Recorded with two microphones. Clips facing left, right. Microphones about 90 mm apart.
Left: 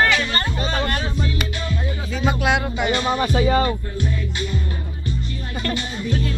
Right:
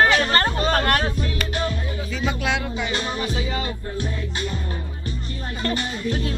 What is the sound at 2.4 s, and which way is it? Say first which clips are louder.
Music: left 4 dB; 50° left (ahead or behind).